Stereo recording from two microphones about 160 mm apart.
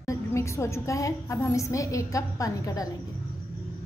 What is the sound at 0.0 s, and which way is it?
A woman's voice, 20° left (ahead or behind).